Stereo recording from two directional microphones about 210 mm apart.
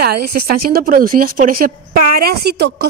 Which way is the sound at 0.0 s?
45° right (ahead or behind).